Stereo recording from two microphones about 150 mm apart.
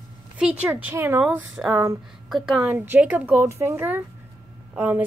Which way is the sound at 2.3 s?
Centre (ahead or behind).